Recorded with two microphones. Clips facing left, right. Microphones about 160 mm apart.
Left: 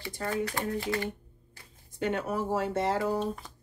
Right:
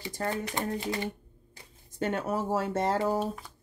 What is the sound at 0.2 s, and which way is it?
Speech, 20° right (ahead or behind).